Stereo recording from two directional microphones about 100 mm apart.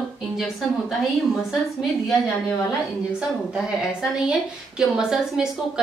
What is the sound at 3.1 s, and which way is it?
A woman's voice, 5° right (ahead or behind).